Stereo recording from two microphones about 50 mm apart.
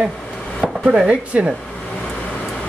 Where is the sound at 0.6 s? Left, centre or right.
Centre.